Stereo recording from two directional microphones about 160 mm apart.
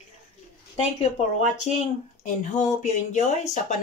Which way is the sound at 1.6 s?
50° left (ahead or behind).